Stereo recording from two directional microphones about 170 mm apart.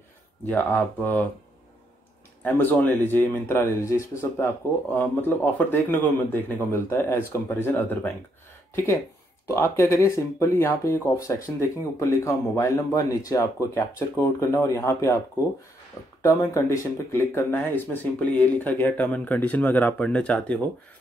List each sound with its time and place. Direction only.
0.5 s speech: 10° left (ahead or behind)
2.4 s speech: 10° left (ahead or behind)
9.5 s speech: 15° left (ahead or behind)
16.2 s speech: 20° left (ahead or behind)